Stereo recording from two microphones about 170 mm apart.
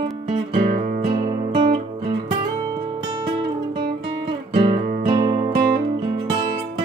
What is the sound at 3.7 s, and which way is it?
Guitar, 30° right (ahead or behind).